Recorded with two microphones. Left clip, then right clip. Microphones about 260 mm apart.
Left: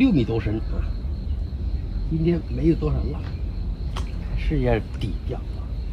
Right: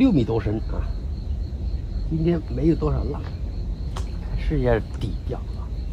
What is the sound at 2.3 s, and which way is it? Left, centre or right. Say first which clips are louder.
Speech: even; centre.